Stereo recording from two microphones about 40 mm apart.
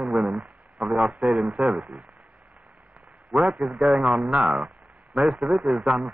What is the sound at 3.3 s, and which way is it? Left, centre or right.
A man's voice, right.